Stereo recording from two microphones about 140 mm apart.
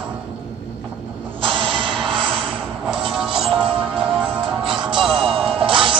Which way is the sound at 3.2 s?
40° right (ahead or behind).